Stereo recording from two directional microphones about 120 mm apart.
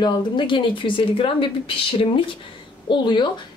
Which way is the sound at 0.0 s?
45° left (ahead or behind).